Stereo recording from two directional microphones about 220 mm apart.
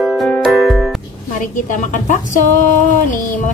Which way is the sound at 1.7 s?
35° left (ahead or behind).